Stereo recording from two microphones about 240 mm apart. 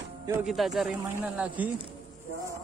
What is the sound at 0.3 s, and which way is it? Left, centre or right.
A man's voice, centre.